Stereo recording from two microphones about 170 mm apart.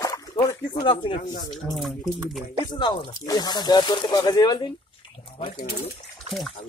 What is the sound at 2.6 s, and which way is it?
Speech, 25° left (ahead or behind).